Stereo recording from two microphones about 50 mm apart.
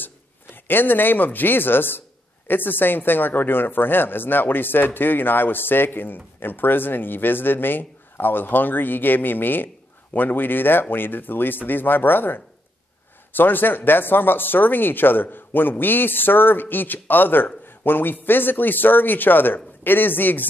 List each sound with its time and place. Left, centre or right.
0.7 s a man's voice: left